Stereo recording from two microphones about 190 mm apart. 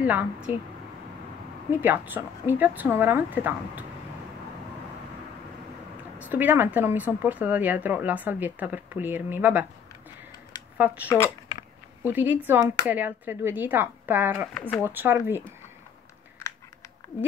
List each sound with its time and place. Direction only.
0.0 s speech: 10° right (ahead or behind)
1.7 s speech: 10° right (ahead or behind)
6.1 s speech: 10° right (ahead or behind)
11.1 s speech: 15° left (ahead or behind)
12.0 s speech: 10° right (ahead or behind)